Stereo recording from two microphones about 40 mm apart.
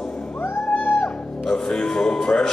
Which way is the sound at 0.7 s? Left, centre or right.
Left.